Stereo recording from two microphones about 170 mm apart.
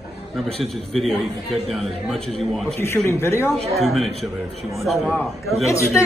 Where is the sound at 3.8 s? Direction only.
Centre (ahead or behind).